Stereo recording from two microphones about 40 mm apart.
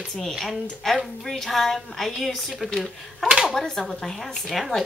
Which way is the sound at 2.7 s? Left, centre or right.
Centre.